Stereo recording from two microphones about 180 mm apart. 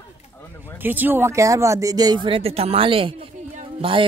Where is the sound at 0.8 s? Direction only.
10° right (ahead or behind).